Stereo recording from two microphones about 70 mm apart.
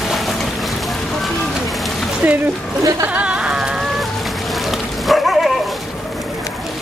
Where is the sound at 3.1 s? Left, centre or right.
Centre.